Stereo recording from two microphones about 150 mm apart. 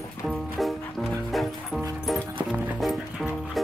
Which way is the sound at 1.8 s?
20° right (ahead or behind).